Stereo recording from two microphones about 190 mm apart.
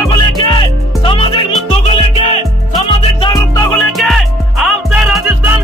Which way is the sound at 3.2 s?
20° left (ahead or behind).